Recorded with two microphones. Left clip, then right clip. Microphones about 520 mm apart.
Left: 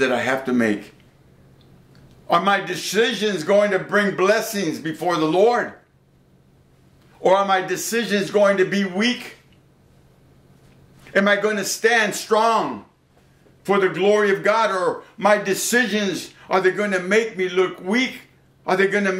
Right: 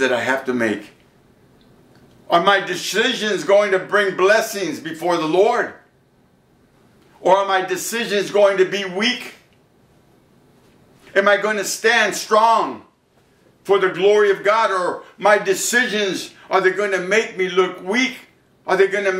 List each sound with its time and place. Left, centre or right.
0.0 s a man's voice: left
2.2 s a man's voice: left
7.2 s a man's voice: left
11.1 s a man's voice: left
13.7 s a man's voice: left